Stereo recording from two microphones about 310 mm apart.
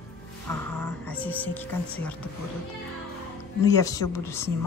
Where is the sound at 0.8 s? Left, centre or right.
Centre.